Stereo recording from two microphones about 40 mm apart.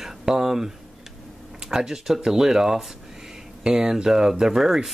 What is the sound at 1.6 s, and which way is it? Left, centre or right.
Speech, centre.